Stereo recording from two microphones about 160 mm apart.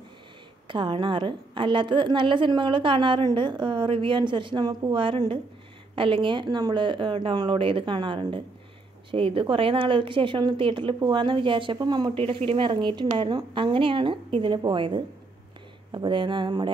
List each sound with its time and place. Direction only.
0.7 s a woman's voice: 30° right (ahead or behind)